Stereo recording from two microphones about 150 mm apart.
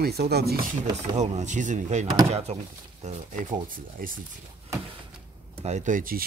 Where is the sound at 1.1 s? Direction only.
50° right (ahead or behind); by 4.2 s 70° right (ahead or behind).